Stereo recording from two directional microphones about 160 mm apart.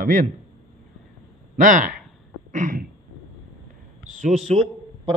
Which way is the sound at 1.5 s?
55° right (ahead or behind).